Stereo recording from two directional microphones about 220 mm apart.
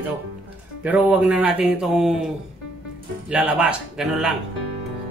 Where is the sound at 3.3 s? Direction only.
5° right (ahead or behind).